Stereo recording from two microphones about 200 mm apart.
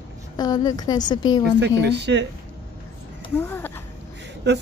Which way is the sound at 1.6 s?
60° right (ahead or behind).